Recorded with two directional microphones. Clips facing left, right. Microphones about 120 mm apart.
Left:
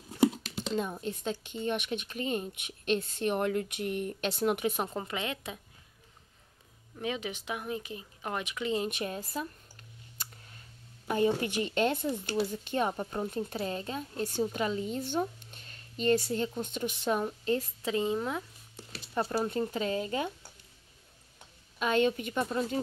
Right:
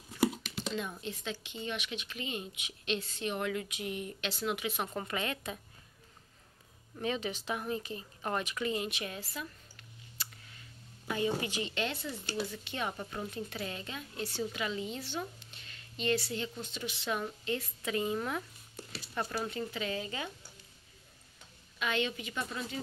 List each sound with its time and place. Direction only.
0.1 s a sound: 30° left (ahead or behind)
1.0 s a woman's voice: 45° left (ahead or behind)
4.8 s speech: 20° left (ahead or behind)
7.0 s speech: 10° left (ahead or behind)
8.7 s speech: 40° left (ahead or behind)
11.1 s a woman's voice: 45° left (ahead or behind)
17.2 s a woman's voice: 35° left (ahead or behind)
17.9 s speech: 25° left (ahead or behind)
19.1 s speech: 30° left (ahead or behind)
21.7 s a woman's voice: 40° left (ahead or behind)